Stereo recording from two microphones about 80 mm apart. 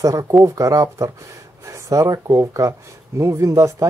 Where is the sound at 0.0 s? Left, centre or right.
Right.